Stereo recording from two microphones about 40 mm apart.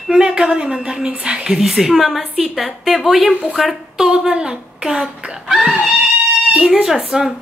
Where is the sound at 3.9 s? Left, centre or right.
Centre.